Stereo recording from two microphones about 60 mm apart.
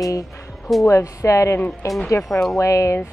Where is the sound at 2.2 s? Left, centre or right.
Centre.